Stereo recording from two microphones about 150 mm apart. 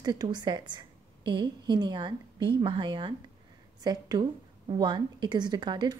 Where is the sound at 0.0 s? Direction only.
25° right (ahead or behind).